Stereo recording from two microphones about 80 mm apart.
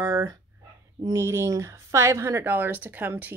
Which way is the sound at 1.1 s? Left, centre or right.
Right.